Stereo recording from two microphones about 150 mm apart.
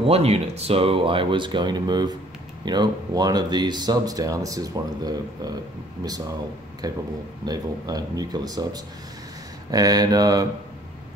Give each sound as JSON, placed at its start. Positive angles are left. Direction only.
{"t": 0.0, "sound": "speech", "side_deg": -40}